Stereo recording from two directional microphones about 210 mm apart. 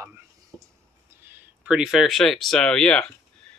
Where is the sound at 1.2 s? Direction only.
10° right (ahead or behind).